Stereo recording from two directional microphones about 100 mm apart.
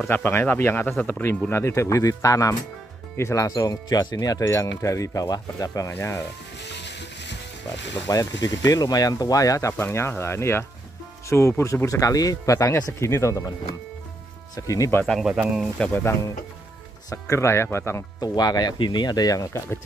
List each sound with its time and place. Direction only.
0.1 s speech: 20° left (ahead or behind)
0.9 s speech: 10° left (ahead or behind)
1.5 s speech: 30° left (ahead or behind)
8.1 s speech: 35° left (ahead or behind)
14.5 s speech: 35° left (ahead or behind)
15.0 s speech: centre (ahead or behind)
15.9 s speech: 25° left (ahead or behind)
18.2 s speech: 40° left (ahead or behind)